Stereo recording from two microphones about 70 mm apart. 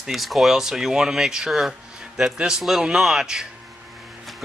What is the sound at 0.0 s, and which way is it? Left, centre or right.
Speech, centre.